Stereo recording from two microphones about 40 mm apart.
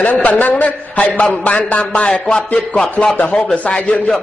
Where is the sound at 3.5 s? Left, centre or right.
Left.